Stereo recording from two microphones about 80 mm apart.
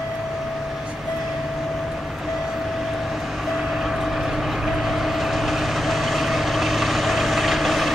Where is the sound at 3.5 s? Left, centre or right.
Centre.